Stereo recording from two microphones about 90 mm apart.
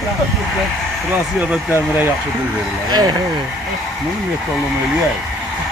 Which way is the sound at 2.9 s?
50° right (ahead or behind).